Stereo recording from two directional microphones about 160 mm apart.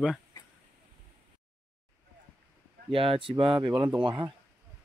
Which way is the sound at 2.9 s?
35° right (ahead or behind).